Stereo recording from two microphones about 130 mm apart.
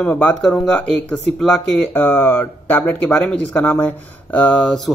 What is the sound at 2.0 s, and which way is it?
Speech, 15° left (ahead or behind).